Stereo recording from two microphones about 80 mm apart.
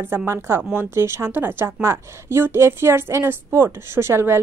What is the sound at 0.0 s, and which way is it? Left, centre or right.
Speech, right.